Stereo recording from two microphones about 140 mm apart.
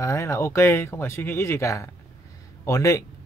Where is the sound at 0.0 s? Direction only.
20° left (ahead or behind).